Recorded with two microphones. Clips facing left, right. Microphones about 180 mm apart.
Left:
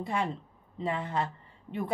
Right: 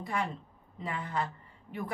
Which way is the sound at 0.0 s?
25° left (ahead or behind).